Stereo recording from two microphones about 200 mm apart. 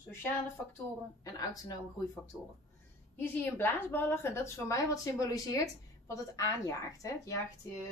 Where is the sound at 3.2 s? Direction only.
10° left (ahead or behind).